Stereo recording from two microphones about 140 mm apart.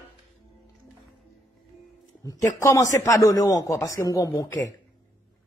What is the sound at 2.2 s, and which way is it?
A man's voice, 25° left (ahead or behind).